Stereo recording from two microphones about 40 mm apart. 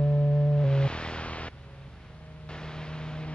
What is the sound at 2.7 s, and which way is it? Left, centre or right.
Vehicle, left.